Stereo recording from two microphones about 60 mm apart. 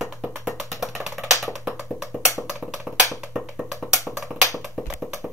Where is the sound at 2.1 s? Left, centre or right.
Right.